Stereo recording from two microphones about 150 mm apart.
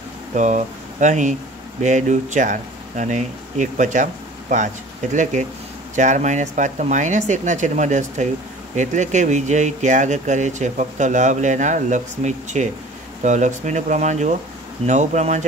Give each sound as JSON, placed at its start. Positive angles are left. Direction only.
{"t": 0.3, "sound": "speech", "side_deg": -55}